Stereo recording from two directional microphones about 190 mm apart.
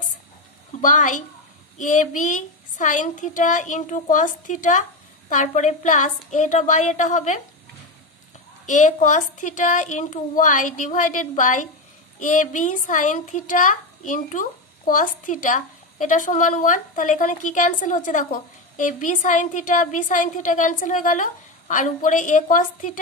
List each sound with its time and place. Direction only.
0.7 s a woman's voice: 45° left (ahead or behind)
8.6 s a woman's voice: 40° left (ahead or behind)